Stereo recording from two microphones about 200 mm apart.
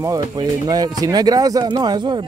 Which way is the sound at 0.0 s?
20° right (ahead or behind).